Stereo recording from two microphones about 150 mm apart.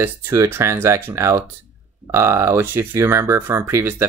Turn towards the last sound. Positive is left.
turn(degrees=-15)  # may be behind; listen again after turning